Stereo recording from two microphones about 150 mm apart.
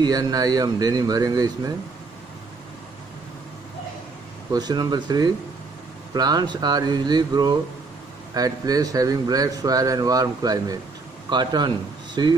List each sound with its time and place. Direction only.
0.0 s speech: 25° right (ahead or behind)
4.5 s speech: 25° right (ahead or behind)